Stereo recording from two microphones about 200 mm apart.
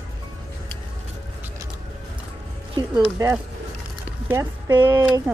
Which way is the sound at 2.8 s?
20° right (ahead or behind).